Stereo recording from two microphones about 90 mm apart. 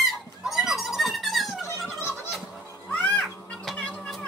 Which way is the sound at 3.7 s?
15° left (ahead or behind).